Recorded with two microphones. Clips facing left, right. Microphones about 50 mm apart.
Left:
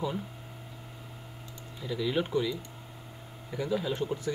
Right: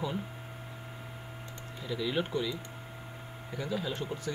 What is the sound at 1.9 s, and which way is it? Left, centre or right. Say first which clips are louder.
Speech: left 2 dB; centre.